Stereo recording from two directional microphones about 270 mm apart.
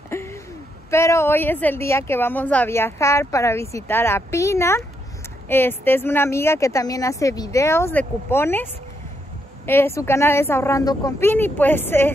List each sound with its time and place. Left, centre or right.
0.1 s a sound: centre
0.8 s a woman's voice: centre
9.7 s a woman's voice: centre